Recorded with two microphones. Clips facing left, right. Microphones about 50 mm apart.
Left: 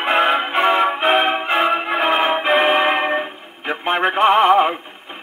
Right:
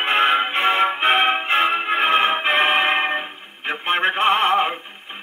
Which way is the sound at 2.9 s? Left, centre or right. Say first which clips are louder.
Left 2 dB; centre.